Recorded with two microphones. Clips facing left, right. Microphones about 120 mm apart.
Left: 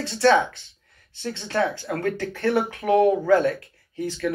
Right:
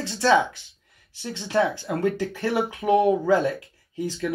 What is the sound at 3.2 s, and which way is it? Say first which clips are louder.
Speech: left 2 dB; 20° right (ahead or behind).